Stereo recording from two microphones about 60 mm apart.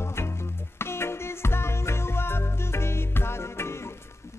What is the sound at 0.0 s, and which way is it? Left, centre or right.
Music, left.